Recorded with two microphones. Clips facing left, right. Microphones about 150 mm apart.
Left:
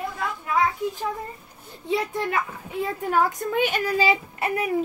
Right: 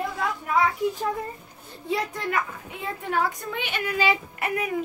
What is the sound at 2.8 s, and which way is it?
A child's voice, 40° left (ahead or behind).